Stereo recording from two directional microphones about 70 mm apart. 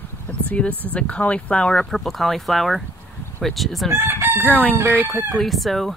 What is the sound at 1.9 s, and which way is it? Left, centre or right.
Speech, centre.